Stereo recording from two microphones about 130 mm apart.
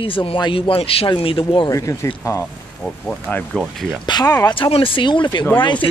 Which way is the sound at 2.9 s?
10° left (ahead or behind).